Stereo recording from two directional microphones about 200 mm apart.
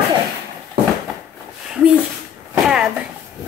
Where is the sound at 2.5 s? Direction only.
5° right (ahead or behind).